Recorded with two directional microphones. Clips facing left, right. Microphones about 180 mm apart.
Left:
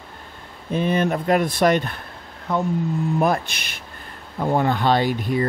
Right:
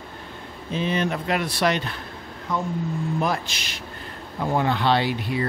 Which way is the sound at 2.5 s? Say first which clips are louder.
Left 4 dB; 60° left (ahead or behind).